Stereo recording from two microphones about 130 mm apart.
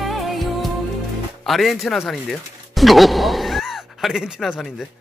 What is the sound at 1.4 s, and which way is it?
Speech, centre (ahead or behind).